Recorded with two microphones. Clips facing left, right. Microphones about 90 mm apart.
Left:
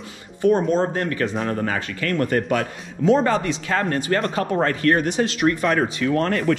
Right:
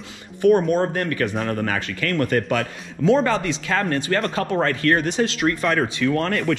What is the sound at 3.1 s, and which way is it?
Speech, 20° left (ahead or behind).